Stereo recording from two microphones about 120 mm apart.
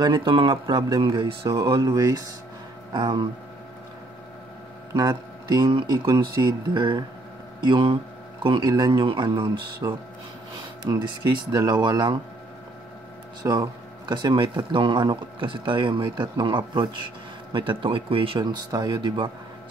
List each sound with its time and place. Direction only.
0.0 s speech: 40° right (ahead or behind)
4.9 s speech: 35° right (ahead or behind)
13.5 s speech: 35° right (ahead or behind)
18.7 s speech: 35° right (ahead or behind)